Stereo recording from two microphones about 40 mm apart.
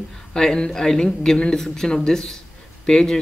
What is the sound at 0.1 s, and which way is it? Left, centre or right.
Speech, centre.